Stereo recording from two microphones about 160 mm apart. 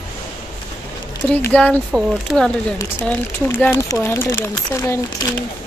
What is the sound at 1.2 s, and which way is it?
Speech, 10° left (ahead or behind).